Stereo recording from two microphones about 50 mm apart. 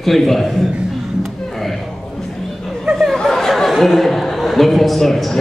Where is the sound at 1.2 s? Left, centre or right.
Centre.